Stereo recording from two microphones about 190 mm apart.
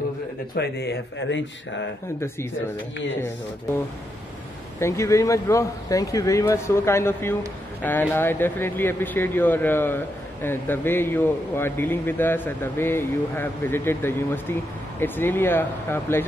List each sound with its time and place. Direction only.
0.6 s speech: 60° left (ahead or behind); by 1.9 s 75° left (ahead or behind)
2.1 s speech: 15° left (ahead or behind)
4.7 s speech: 15° left (ahead or behind)